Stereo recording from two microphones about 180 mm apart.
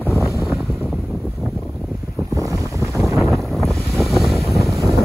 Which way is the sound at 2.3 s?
20° right (ahead or behind).